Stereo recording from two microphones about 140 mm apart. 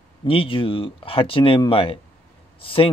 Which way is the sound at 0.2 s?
40° left (ahead or behind).